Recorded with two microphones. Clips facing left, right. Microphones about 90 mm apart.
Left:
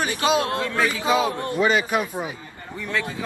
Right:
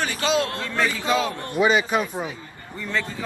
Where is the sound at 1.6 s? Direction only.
Centre (ahead or behind).